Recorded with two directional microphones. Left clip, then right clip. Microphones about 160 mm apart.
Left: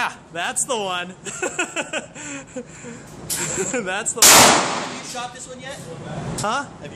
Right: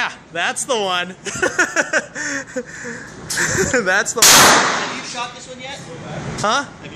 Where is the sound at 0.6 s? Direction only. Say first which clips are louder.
Right 5 dB; centre (ahead or behind).